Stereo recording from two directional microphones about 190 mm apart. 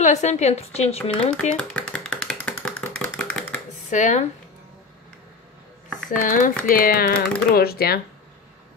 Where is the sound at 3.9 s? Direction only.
40° left (ahead or behind).